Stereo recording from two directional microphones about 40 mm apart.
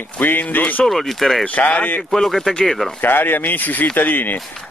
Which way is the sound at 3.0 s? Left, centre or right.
Left.